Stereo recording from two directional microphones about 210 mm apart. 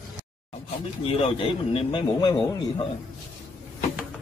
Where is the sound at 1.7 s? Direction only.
25° left (ahead or behind).